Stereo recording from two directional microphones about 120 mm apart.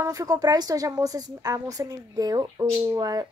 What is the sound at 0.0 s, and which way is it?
A woman's voice, 30° right (ahead or behind).